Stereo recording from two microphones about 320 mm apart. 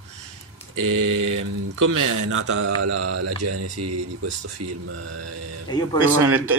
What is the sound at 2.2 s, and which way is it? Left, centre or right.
Mantra, right.